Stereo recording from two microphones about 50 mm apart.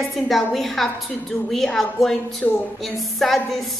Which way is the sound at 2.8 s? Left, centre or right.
Centre.